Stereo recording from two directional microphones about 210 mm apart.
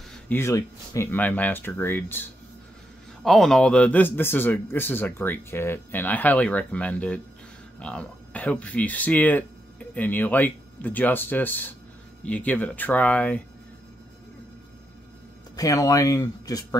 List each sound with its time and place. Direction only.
0.3 s a man's voice: 15° left (ahead or behind)
3.3 s a man's voice: centre (ahead or behind)
15.5 s a man's voice: 15° left (ahead or behind)